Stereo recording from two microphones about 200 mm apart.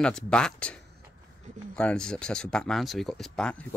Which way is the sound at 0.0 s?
5° left (ahead or behind).